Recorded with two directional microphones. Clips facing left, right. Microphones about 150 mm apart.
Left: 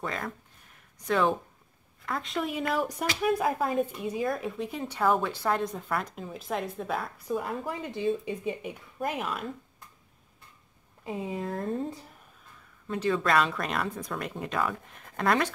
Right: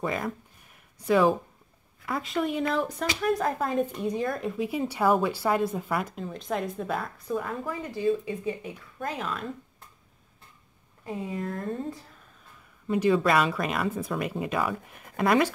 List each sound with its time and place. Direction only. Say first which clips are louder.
0.0 s speech: right 5 dB; 10° right (ahead or behind); by 7.5 s 5° left (ahead or behind)
7.8 s speech: right 4 dB; 20° left (ahead or behind)
11.1 s speech: even; 25° left (ahead or behind)
12.8 s speech: right 5 dB; 10° right (ahead or behind)